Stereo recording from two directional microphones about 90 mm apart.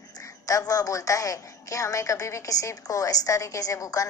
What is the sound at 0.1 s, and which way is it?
A woman's voice, 40° left (ahead or behind).